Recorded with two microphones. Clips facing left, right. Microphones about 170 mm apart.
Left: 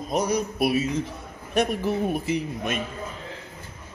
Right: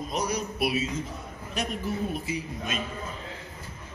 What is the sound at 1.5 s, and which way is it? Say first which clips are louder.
A woman's voice: left 8 dB; 60° left (ahead or behind).